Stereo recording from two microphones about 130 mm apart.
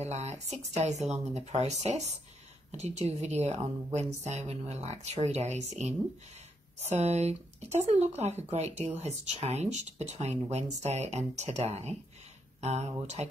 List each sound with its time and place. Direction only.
0.0 s speech: 55° right (ahead or behind)